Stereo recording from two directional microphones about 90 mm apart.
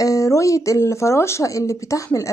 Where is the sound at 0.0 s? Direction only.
40° left (ahead or behind).